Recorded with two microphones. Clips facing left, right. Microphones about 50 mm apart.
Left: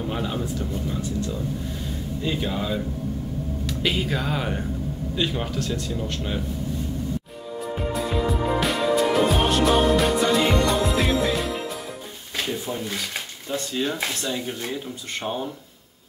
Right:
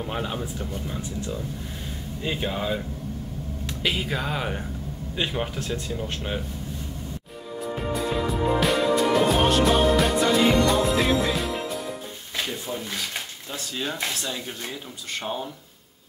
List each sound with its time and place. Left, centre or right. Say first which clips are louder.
0.0 s speech: left 2 dB; centre
3.8 s speech: left 1 dB; centre
5.1 s speech: left 1 dB; centre
7.9 s music: left 1 dB; centre
12.4 s speech: left 2 dB; centre